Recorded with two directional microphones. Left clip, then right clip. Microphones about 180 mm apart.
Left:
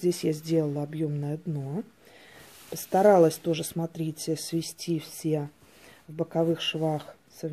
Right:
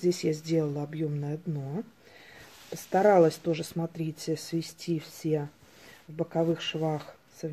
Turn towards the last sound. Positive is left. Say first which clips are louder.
# left 2 dB
turn(degrees=35)  # may be behind; listen again after turning